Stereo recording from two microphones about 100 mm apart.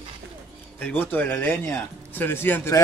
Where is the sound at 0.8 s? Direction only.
20° left (ahead or behind).